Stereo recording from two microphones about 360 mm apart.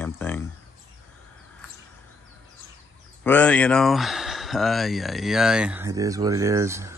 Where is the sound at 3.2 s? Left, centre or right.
Centre.